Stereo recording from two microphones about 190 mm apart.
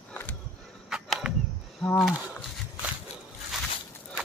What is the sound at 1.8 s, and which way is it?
Speech, 5° left (ahead or behind).